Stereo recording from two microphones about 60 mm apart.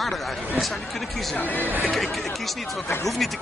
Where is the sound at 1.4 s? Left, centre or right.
Left.